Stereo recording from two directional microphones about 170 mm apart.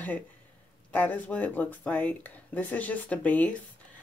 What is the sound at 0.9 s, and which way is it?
Speech, 10° left (ahead or behind).